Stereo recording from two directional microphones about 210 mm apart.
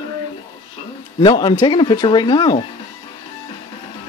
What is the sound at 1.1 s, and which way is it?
Speech, 20° left (ahead or behind).